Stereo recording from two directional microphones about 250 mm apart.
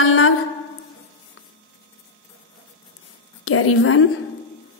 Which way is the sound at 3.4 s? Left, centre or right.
Left.